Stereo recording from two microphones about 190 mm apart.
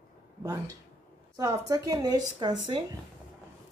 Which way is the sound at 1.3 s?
20° right (ahead or behind).